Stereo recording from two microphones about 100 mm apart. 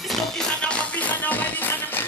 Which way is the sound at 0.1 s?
10° left (ahead or behind).